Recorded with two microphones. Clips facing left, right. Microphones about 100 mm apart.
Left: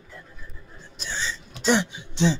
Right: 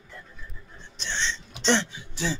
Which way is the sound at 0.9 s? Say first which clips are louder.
Even; 5° left (ahead or behind).